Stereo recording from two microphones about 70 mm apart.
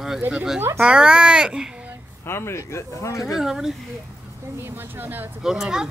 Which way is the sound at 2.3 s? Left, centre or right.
Left.